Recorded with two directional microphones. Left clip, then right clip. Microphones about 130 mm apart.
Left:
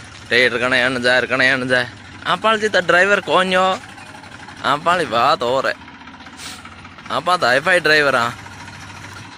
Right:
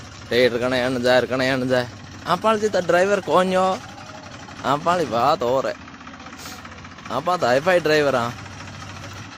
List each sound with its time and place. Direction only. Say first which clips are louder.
0.3 s speech: left 4 dB; 15° right (ahead or behind)
7.2 s speech: left 3 dB; 25° right (ahead or behind)